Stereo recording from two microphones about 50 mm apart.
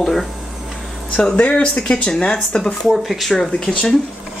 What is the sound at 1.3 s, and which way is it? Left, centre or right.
Speech, left.